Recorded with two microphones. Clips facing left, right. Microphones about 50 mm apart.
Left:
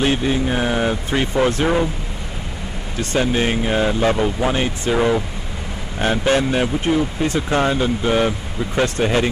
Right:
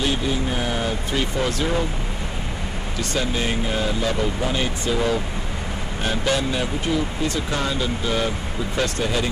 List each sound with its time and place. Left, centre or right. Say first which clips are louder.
0.0 s speech: left 5 dB; left
3.0 s speech: left 6 dB; left